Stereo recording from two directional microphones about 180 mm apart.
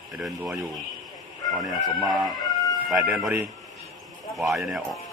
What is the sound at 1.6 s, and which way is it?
Speech, centre (ahead or behind).